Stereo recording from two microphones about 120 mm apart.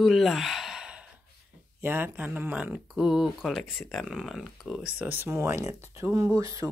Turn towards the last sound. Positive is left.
turn(degrees=-25)  # may be behind; listen again after turning